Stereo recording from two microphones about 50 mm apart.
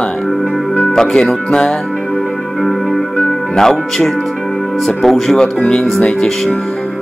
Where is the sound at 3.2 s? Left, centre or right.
Centre.